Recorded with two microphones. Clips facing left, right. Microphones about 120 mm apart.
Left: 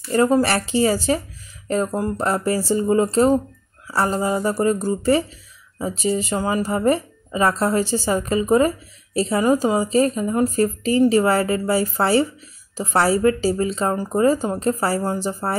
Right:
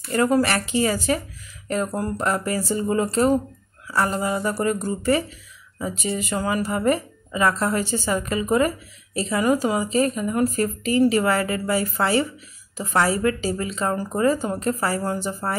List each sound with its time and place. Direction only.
0.1 s a woman's voice: 30° left (ahead or behind)
1.9 s speech: 20° left (ahead or behind)
2.1 s a woman's voice: 30° left (ahead or behind)